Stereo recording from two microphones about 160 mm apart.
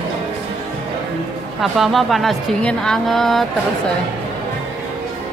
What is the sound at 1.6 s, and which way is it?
A woman's voice, centre (ahead or behind).